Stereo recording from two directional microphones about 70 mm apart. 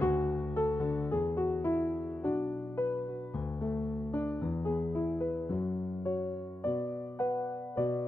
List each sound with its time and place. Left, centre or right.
0.0 s music: left